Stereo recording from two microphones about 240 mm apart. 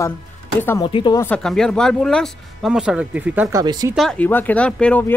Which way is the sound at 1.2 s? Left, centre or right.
Centre.